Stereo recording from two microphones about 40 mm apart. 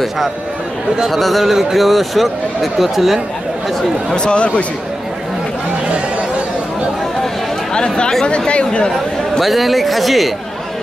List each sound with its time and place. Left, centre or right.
1.0 s a man's voice: centre
4.1 s speech: left
7.7 s speech: left
9.4 s a man's voice: centre